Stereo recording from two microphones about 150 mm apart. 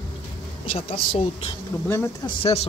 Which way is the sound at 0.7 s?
40° left (ahead or behind).